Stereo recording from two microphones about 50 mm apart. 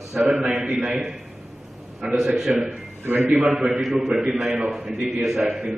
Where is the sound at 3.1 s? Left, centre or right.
Right.